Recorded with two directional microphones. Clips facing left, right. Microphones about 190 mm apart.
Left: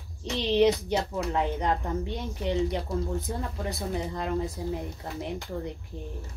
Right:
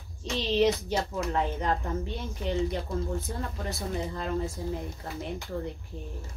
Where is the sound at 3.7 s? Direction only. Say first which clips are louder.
Left 1 dB; 15° left (ahead or behind).